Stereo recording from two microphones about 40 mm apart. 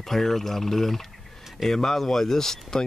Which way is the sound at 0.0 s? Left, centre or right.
Centre.